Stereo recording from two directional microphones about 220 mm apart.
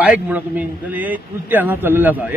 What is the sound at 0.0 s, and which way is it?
A man's voice, 5° right (ahead or behind).